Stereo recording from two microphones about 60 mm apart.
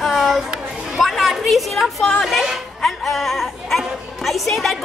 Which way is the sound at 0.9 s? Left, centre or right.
Centre.